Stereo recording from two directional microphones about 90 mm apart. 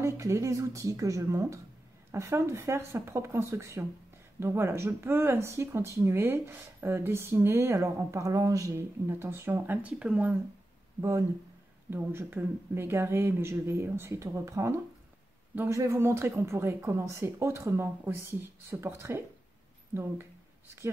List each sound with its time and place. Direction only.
0.0 s speech: 35° right (ahead or behind); by 10.4 s 15° right (ahead or behind)
11.0 s speech: 35° right (ahead or behind)
11.9 s speech: 25° right (ahead or behind)